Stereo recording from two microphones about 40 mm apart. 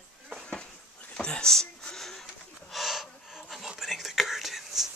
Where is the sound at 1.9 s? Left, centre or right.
Centre.